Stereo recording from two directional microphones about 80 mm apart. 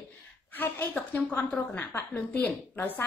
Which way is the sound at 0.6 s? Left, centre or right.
Left.